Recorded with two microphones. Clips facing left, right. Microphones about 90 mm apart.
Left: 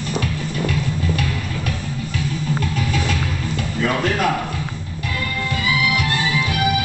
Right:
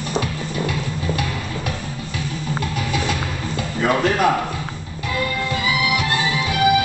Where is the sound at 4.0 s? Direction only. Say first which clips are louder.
Right 3 dB; 20° right (ahead or behind).